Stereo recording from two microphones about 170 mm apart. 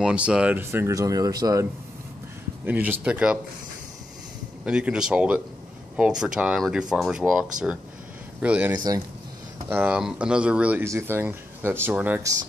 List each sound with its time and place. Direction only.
0.0 s speech: 5° right (ahead or behind); by 1.7 s 20° right (ahead or behind)
2.6 s speech: 10° right (ahead or behind)
4.6 s speech: 5° right (ahead or behind)
8.7 s speech: 20° right (ahead or behind)
9.7 s speech: 10° right (ahead or behind)